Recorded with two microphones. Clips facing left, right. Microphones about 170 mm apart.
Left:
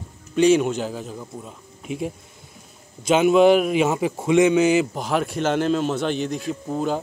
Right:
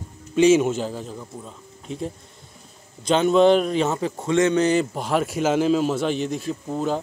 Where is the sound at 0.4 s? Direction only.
5° right (ahead or behind).